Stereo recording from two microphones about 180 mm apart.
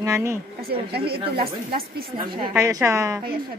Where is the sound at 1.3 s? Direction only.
55° right (ahead or behind).